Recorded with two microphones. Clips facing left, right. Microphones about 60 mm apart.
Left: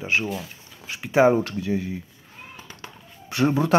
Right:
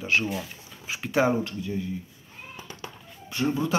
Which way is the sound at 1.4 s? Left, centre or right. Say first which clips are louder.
Left 5 dB; left.